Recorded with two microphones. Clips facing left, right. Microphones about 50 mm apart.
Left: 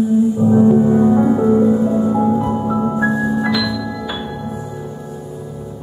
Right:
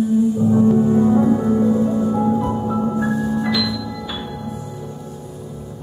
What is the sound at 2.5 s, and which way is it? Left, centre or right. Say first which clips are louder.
Music: left 3 dB; left.